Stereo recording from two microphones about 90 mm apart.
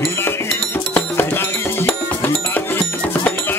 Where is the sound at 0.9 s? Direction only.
25° left (ahead or behind).